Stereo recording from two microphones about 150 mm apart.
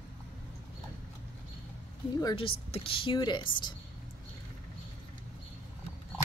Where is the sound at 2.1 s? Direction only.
30° left (ahead or behind).